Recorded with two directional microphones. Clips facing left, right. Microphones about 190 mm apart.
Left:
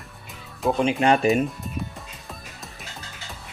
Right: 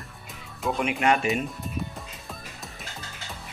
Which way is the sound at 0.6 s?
30° left (ahead or behind).